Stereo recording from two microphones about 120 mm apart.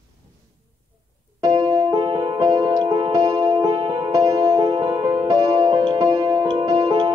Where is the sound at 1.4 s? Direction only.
30° right (ahead or behind).